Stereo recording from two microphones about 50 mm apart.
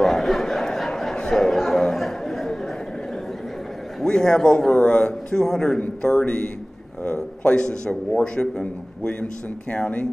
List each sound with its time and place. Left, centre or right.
0.0 s a sound: centre
1.3 s speech: centre
4.0 s a man's voice: centre
6.0 s a man's voice: left